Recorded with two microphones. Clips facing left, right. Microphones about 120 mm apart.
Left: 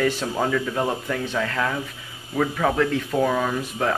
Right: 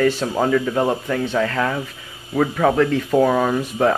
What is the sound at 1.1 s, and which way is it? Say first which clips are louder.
Speech: right 5 dB; centre (ahead or behind).